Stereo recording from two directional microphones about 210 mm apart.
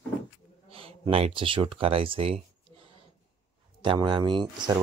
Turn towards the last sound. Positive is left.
turn(degrees=-20)  # may be behind; listen again after turning